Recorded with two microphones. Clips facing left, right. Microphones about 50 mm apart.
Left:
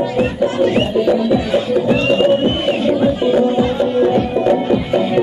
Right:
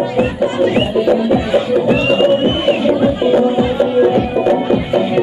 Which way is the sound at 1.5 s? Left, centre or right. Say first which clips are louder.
Right 2 dB; centre.